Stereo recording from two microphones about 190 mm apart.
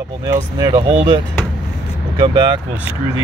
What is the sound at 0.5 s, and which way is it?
Speech, 20° right (ahead or behind).